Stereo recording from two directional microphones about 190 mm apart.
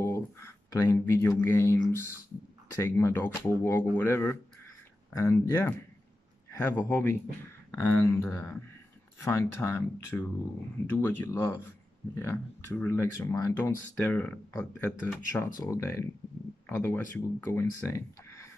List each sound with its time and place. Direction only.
0.0 s speech: 15° left (ahead or behind)